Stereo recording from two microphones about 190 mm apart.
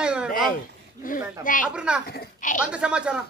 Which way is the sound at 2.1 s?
50° left (ahead or behind).